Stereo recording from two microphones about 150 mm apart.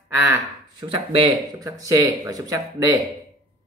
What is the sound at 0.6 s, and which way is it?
Speech, 30° right (ahead or behind).